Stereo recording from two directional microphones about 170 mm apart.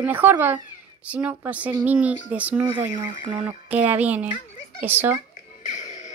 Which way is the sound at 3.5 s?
10° right (ahead or behind).